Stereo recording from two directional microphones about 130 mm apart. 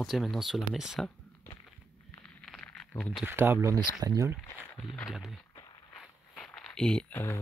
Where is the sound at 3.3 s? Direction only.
20° right (ahead or behind).